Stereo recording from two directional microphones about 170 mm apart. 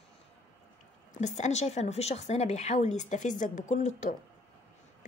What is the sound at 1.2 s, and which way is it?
A woman's voice, 40° left (ahead or behind).